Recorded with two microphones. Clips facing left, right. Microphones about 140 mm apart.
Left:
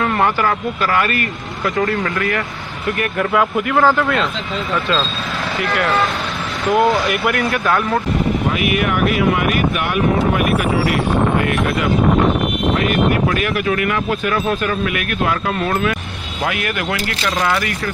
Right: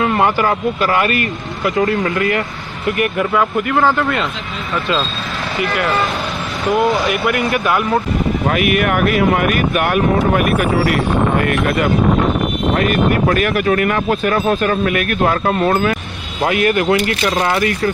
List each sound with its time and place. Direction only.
0.0 s speech: 20° right (ahead or behind)
3.2 s speech: centre (ahead or behind)
5.6 s speech: centre (ahead or behind)
8.7 s speech: 55° right (ahead or behind); by 17.9 s 30° right (ahead or behind)